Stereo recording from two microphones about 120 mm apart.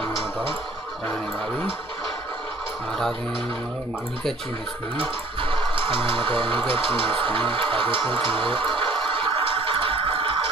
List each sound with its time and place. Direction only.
5.4 s speech: 45° right (ahead or behind)
9.3 s music: 50° right (ahead or behind)